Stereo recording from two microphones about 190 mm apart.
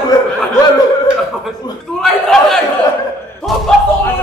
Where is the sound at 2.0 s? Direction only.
Centre (ahead or behind).